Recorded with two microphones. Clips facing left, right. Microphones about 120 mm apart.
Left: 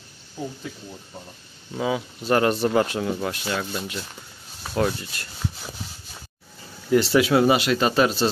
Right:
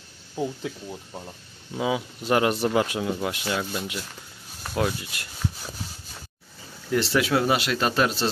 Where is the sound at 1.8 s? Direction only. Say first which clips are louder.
Left 1 dB; 10° right (ahead or behind).